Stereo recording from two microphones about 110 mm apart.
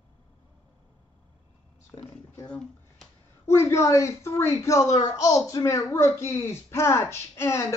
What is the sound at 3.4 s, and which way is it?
Speech, 25° left (ahead or behind).